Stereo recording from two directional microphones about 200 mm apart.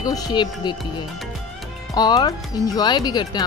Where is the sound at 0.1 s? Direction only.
20° left (ahead or behind).